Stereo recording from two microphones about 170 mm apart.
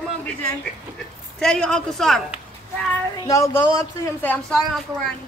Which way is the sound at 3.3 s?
20° left (ahead or behind).